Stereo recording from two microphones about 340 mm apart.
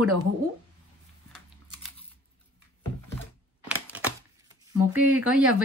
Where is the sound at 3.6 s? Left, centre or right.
Centre.